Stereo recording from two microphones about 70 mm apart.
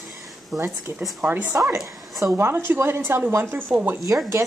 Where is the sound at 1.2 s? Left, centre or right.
Right.